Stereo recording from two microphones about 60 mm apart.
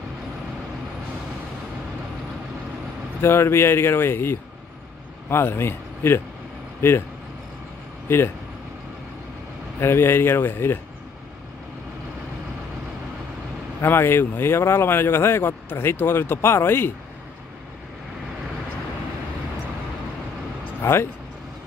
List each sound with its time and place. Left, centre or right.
3.2 s speech: left
8.1 s speech: left
9.8 s speech: left
13.7 s speech: left
20.8 s speech: left